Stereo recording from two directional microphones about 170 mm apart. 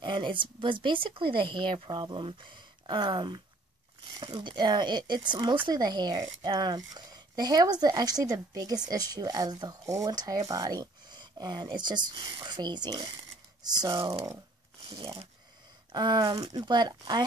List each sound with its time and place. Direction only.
0.0 s speech: 25° right (ahead or behind)